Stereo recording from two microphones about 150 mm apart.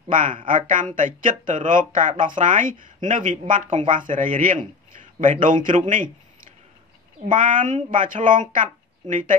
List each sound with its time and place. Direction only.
0.1 s a man's voice: 65° right (ahead or behind)